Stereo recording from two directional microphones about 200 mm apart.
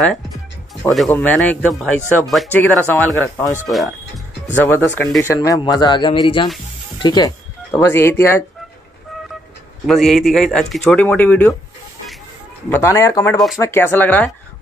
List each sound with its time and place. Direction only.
0.9 s speech: 5° left (ahead or behind)
4.6 s speech: 10° left (ahead or behind)
9.8 s speech: centre (ahead or behind)
12.6 s speech: 10° left (ahead or behind)